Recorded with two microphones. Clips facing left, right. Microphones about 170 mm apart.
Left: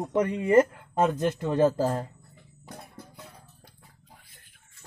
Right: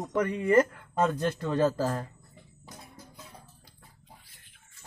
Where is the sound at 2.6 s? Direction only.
60° left (ahead or behind).